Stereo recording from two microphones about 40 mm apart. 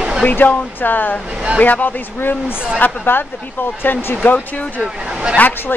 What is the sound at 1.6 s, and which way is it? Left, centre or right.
Speech, left.